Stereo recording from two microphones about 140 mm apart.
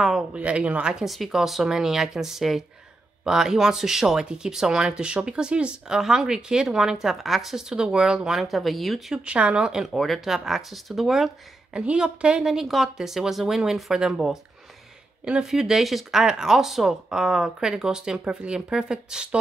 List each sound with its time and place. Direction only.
0.0 s speech: 5° right (ahead or behind)